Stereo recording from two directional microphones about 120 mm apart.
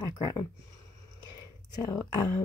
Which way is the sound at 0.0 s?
35° left (ahead or behind).